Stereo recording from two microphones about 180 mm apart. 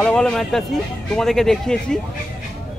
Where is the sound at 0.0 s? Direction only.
5° left (ahead or behind).